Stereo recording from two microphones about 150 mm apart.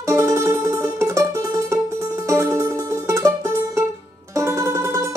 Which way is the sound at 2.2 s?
20° right (ahead or behind).